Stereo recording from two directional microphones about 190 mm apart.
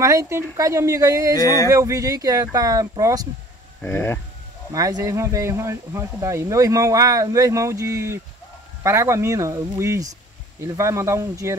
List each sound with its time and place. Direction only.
0.0 s speech: 15° right (ahead or behind)
1.4 s speech: 20° left (ahead or behind)
1.7 s speech: 15° right (ahead or behind)
3.8 s speech: 10° left (ahead or behind)
4.7 s speech: 20° right (ahead or behind)